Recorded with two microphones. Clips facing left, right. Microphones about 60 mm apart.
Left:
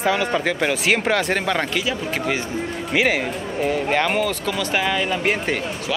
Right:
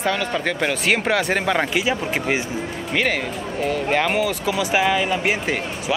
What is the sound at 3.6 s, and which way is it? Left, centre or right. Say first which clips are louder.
Speech: even; centre.